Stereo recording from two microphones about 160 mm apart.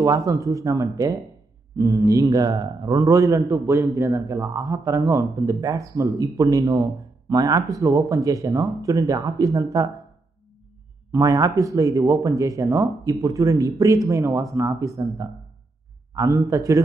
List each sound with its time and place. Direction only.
0.0 s a man's voice: 20° right (ahead or behind)
11.1 s a man's voice: 20° right (ahead or behind)